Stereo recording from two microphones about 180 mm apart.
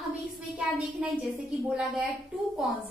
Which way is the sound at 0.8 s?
5° right (ahead or behind).